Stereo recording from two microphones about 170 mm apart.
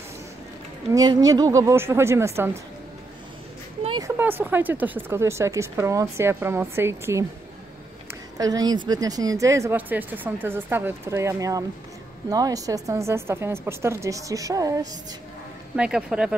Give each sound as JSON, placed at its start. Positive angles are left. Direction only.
{"t": 0.9, "sound": "a woman's voice", "side_deg": -20}
{"t": 4.0, "sound": "a woman's voice", "side_deg": -10}
{"t": 15.7, "sound": "speech", "side_deg": -5}